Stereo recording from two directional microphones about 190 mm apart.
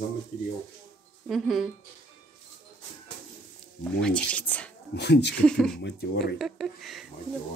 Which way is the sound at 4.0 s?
5° left (ahead or behind).